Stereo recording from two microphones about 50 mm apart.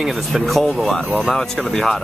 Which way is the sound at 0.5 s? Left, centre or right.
Centre.